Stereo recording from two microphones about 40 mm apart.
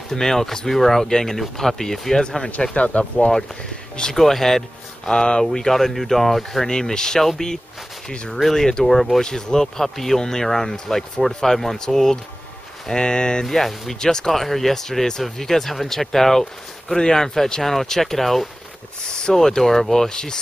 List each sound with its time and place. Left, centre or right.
0.1 s speech: centre
2.7 s speech: left
4.1 s speech: centre
6.7 s speech: centre
13.9 s speech: centre
19.0 s a sound: centre
19.3 s speech: centre